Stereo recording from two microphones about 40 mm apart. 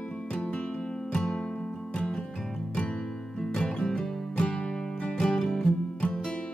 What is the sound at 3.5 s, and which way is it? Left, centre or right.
Music, centre.